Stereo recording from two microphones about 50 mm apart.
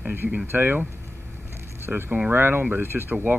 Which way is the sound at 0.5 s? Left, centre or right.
Right.